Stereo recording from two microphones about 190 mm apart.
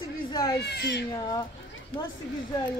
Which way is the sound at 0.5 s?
60° left (ahead or behind).